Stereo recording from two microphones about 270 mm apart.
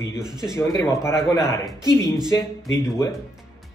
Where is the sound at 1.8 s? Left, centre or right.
Centre.